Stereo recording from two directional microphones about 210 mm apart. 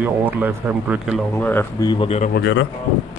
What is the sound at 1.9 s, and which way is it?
Speech, 25° left (ahead or behind).